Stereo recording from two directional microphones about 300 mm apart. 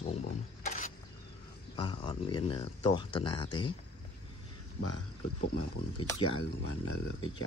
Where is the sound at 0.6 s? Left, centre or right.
Left.